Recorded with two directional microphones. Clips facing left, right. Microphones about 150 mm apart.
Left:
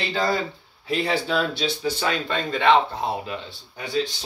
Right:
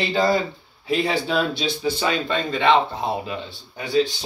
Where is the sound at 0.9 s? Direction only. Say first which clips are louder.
Right 2 dB; centre (ahead or behind).